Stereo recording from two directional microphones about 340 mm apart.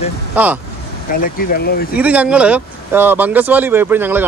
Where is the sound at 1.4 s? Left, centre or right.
Left.